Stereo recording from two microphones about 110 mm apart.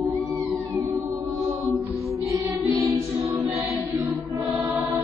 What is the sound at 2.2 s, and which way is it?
Music, 25° right (ahead or behind).